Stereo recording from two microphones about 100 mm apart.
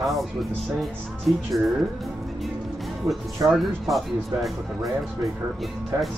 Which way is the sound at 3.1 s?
30° right (ahead or behind).